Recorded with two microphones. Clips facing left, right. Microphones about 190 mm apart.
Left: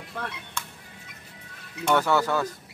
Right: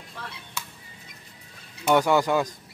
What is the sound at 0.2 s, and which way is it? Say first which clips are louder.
Music: left 6 dB; 55° left (ahead or behind).